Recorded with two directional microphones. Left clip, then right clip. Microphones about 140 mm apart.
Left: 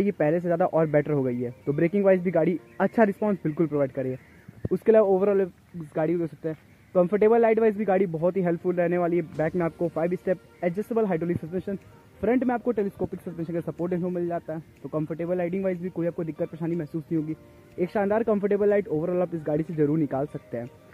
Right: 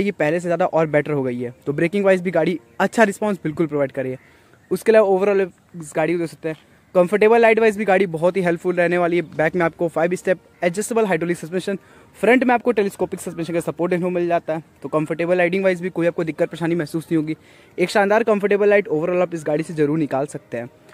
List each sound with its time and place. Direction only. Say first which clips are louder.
0.0 s a man's voice: right 4 dB; 60° right (ahead or behind)
0.4 s speech: right 5 dB; 50° right (ahead or behind)
1.9 s a man's voice: right 4 dB; 70° right (ahead or behind); by 20.6 s 45° right (ahead or behind)